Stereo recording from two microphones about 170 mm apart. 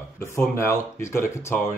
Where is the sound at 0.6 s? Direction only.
15° left (ahead or behind).